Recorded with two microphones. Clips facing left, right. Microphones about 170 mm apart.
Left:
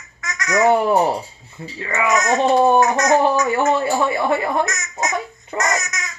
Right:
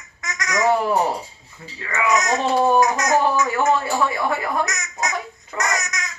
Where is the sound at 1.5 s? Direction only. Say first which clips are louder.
Left 4 dB; 25° left (ahead or behind).